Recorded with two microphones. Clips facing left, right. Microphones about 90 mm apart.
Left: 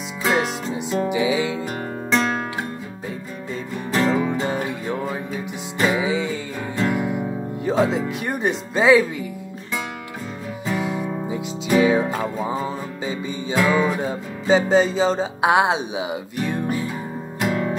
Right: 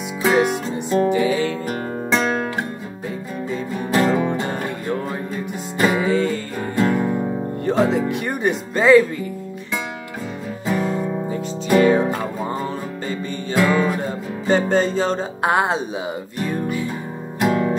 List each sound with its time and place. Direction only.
0.2 s music: centre (ahead or behind)
2.0 s music: centre (ahead or behind)
3.7 s music: 5° right (ahead or behind)
7.6 s speech: centre (ahead or behind)
10.6 s music: 5° left (ahead or behind)
15.0 s speech: 5° left (ahead or behind)